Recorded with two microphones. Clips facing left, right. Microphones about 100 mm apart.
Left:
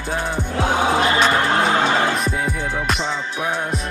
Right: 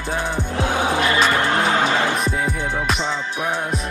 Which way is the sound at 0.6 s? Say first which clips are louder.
Left 3 dB; 25° left (ahead or behind).